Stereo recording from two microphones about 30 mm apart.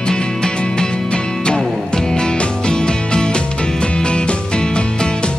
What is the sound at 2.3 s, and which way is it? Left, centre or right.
Music, left.